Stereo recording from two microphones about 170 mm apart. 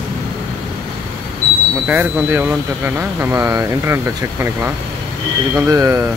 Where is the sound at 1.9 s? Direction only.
10° right (ahead or behind).